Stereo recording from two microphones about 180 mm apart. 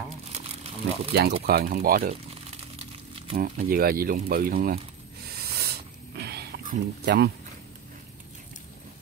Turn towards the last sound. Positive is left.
turn(degrees=-65)  # may be behind; listen again after turning